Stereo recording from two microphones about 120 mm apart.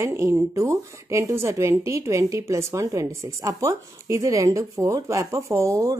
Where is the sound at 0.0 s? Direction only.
25° right (ahead or behind).